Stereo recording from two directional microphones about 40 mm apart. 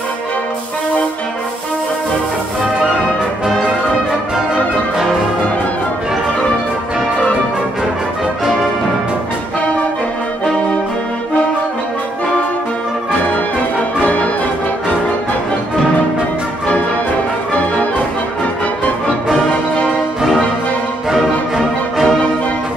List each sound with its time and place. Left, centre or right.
14.0 s brass instrument: left
20.2 s music: centre